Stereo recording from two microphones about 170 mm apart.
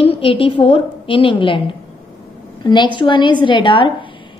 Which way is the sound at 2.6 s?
25° left (ahead or behind).